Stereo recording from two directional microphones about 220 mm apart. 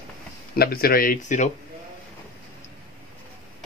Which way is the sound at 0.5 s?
45° left (ahead or behind).